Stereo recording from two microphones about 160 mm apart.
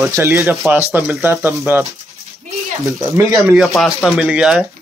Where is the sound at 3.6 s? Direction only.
Centre (ahead or behind).